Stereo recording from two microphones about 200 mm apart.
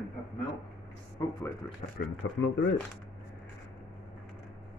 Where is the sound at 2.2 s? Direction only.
60° left (ahead or behind).